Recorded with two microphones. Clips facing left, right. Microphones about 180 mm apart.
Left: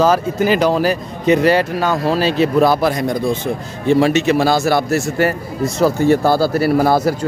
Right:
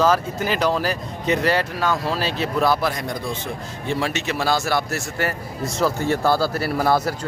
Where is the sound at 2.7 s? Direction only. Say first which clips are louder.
Left 5 dB; 35° left (ahead or behind).